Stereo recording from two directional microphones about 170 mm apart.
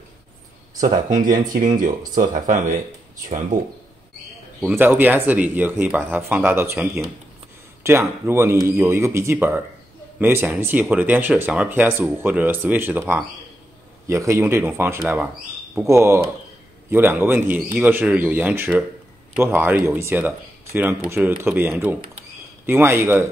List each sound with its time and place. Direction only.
0.7 s speech: 50° right (ahead or behind)
4.6 s speech: 10° right (ahead or behind)
7.8 s speech: 15° right (ahead or behind)